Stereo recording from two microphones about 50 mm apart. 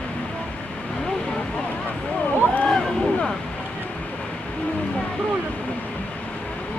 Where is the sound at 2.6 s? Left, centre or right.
Left.